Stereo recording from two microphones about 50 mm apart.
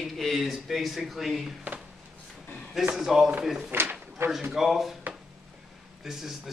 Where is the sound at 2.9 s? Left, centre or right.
Centre.